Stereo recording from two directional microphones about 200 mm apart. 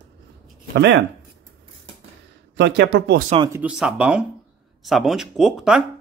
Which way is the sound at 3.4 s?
10° right (ahead or behind).